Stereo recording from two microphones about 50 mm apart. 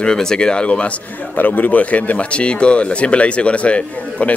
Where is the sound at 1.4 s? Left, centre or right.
Left.